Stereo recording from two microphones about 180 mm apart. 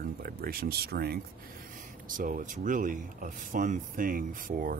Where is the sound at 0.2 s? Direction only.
55° right (ahead or behind).